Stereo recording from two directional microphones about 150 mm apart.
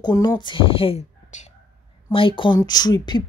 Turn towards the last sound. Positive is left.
turn(degrees=30)  # may be behind; listen again after turning